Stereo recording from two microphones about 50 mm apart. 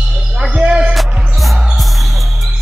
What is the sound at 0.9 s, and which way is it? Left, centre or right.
Music, centre.